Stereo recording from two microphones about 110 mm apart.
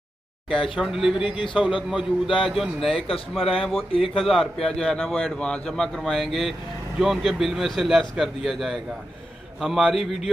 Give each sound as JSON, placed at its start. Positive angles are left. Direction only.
{"t": 0.7, "sound": "a man's voice", "side_deg": -5}
{"t": 1.3, "sound": "a man's voice", "side_deg": 50}
{"t": 1.6, "sound": "a man's voice", "side_deg": -5}